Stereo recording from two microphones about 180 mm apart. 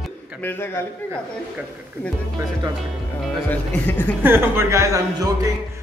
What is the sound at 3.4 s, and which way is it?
Speech, 10° left (ahead or behind).